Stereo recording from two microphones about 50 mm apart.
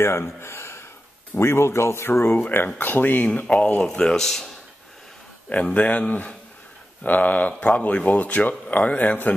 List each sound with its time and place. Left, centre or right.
0.0 s speech: left
2.5 s speech: left
3.3 s speech: left; by 4.5 s centre
5.5 s speech: left